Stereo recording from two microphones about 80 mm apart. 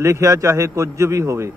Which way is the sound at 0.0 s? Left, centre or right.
Right.